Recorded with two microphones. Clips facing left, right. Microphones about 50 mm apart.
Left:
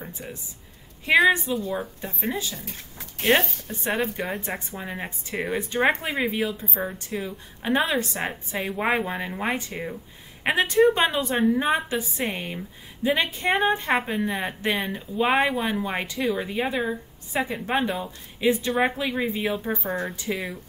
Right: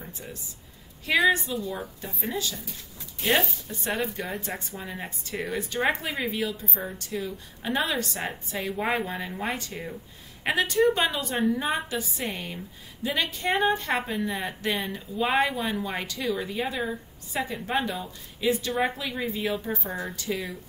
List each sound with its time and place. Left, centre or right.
1.0 s a woman's voice: left
2.6 s speech: left
3.8 s a woman's voice: left